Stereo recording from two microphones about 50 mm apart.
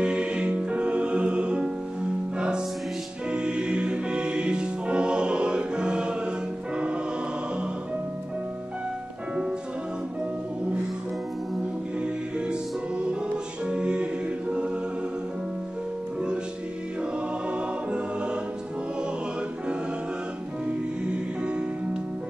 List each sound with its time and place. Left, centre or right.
0.0 s music: centre
12.0 s music: centre
13.7 s music: centre